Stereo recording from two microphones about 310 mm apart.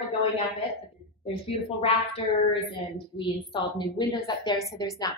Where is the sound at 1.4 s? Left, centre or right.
Centre.